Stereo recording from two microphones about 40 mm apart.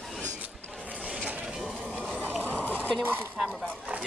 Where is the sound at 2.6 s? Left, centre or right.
Left.